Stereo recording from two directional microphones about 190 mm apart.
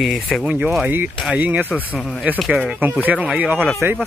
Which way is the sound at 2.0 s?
5° left (ahead or behind).